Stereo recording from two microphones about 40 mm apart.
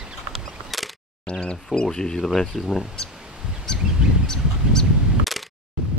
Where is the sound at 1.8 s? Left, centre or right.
Centre.